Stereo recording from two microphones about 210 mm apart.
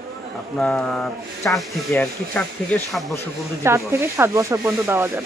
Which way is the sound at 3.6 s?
10° right (ahead or behind).